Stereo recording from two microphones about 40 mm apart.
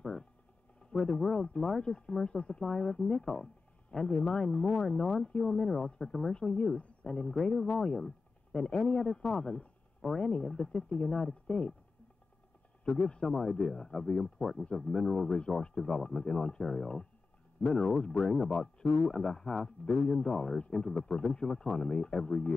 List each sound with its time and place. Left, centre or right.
1.0 s a man's voice: centre
2.6 s a man's voice: centre
13.0 s a man's voice: left